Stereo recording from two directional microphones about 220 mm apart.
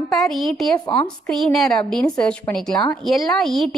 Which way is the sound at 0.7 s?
20° left (ahead or behind).